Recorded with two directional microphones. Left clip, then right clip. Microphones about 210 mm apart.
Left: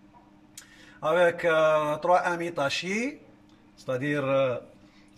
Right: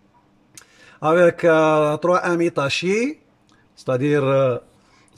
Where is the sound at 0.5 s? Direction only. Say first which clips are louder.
Right 6 dB; 45° right (ahead or behind).